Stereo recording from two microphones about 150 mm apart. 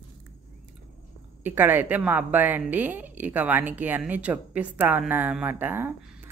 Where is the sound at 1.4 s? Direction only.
10° right (ahead or behind).